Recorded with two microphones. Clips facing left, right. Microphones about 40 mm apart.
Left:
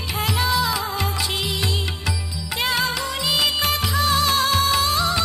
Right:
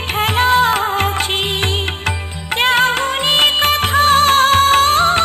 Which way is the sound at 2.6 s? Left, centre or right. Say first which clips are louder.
Right 9 dB; right.